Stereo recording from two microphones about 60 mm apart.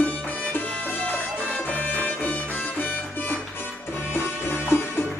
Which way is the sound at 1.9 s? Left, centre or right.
Left.